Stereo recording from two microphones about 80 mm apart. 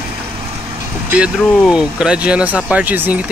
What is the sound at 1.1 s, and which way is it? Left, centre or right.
Speech, centre.